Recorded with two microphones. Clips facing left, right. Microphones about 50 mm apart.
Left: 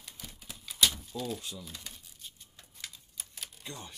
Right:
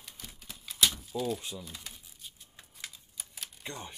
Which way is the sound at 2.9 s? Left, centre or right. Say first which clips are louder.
Left 1 dB; centre.